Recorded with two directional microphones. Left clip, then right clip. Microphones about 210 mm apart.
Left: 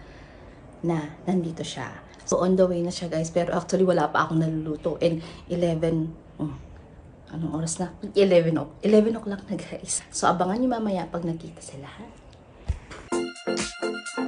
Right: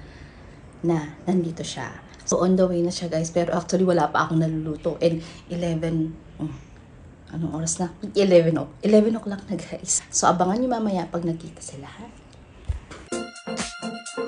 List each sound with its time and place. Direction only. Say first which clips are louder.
0.8 s speech: right 3 dB; 15° left (ahead or behind)
7.2 s speech: right 2 dB; 15° left (ahead or behind)
12.9 s music: left 3 dB; centre (ahead or behind)